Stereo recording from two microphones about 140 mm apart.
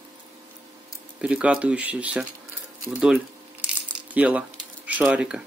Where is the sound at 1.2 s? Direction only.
10° right (ahead or behind).